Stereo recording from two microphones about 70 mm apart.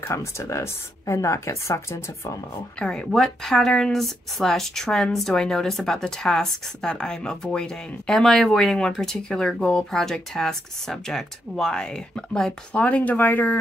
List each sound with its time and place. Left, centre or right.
0.0 s speech: left
2.8 s speech: centre
12.8 s speech: left